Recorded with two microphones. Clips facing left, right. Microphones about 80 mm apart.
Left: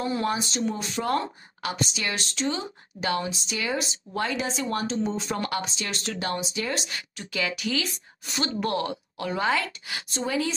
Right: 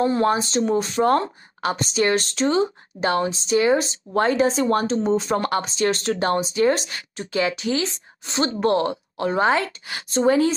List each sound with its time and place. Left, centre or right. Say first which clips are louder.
0.0 s speech: right 7 dB; right